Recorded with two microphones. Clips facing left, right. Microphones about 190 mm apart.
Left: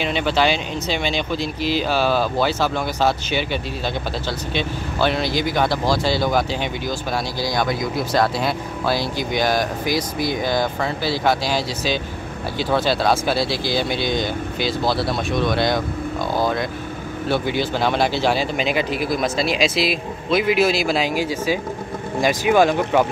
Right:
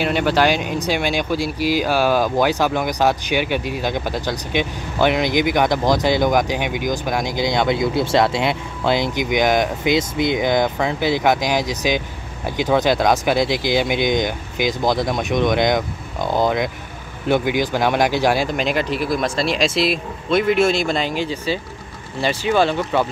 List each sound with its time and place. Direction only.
0.0 s speech: 10° right (ahead or behind)
18.6 s speech: 5° left (ahead or behind)